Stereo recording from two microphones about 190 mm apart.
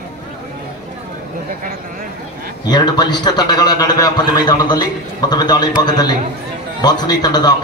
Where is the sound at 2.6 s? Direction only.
20° left (ahead or behind).